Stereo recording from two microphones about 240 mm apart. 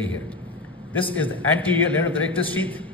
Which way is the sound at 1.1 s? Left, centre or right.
Centre.